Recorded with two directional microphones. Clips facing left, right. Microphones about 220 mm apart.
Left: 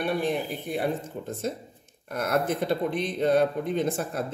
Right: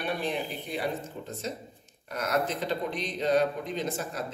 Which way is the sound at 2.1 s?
55° left (ahead or behind).